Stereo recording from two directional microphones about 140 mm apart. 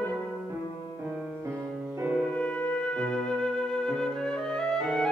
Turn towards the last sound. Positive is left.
turn(degrees=5)  # may be behind; listen again after turning